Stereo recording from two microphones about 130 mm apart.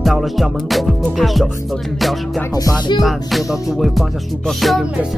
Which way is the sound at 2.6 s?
35° left (ahead or behind).